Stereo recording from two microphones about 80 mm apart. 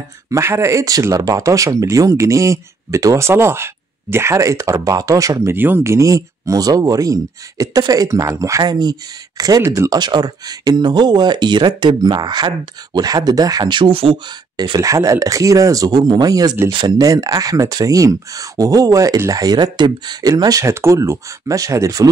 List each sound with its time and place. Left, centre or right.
0.3 s speech: right
5.5 s speech: right
14.8 s speech: right
20.6 s speech: right